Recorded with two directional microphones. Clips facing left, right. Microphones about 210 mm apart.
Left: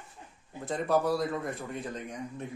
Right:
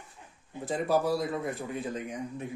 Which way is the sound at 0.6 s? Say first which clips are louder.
Even; centre (ahead or behind).